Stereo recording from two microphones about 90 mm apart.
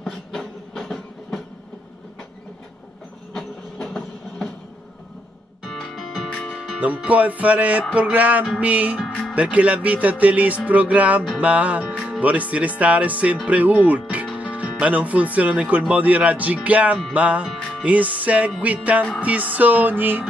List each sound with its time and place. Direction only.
0.0 s train: 5° left (ahead or behind)
3.3 s train: 5° left (ahead or behind)
5.8 s music: centre (ahead or behind)
6.5 s music: 10° right (ahead or behind)
14.4 s speech: 15° right (ahead or behind)
15.9 s music: 15° right (ahead or behind)